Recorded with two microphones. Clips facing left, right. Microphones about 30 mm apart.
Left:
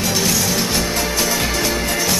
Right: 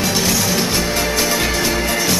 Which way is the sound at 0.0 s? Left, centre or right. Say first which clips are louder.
Right 1 dB; centre.